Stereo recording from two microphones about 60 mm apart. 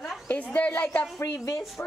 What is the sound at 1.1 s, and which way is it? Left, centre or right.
Speech, left.